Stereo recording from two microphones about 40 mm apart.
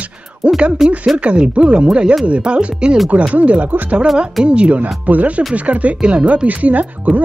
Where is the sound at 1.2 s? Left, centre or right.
Right.